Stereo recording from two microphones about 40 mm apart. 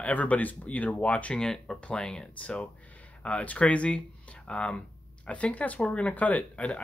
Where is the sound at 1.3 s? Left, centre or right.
Centre.